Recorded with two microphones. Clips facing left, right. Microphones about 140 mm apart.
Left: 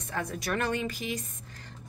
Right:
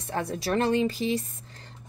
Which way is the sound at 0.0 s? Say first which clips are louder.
Right 4 dB; 30° right (ahead or behind).